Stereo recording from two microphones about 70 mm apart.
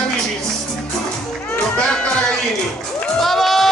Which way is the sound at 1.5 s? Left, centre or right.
Centre.